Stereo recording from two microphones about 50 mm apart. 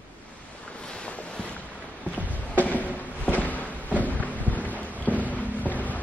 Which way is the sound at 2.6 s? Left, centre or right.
Left.